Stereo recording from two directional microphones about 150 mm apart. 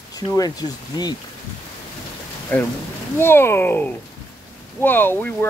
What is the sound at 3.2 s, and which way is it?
Speech, 15° left (ahead or behind).